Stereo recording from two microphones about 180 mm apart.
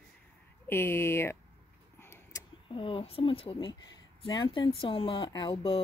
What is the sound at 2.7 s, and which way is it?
Speech, 30° left (ahead or behind).